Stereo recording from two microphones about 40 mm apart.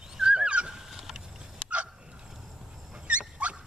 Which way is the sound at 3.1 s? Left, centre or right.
Right.